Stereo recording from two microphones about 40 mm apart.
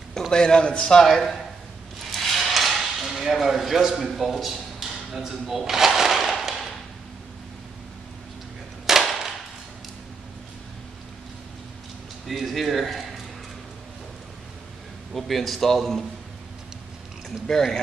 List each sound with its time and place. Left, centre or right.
0.3 s a man's voice: left
1.0 s speech: centre
2.0 s a sound: centre
4.1 s speech: centre
6.2 s a sound: centre
8.9 s a sound: centre
12.3 s a man's voice: centre
15.1 s a man's voice: centre
17.5 s speech: centre